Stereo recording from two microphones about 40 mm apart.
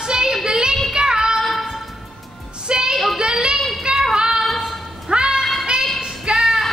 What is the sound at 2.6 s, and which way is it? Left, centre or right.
Music, right.